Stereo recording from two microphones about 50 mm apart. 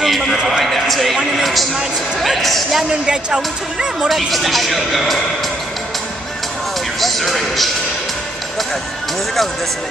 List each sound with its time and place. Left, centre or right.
0.0 s a sound: centre
2.1 s speech: centre
2.9 s speech: centre
4.1 s speech: centre
7.0 s speech: centre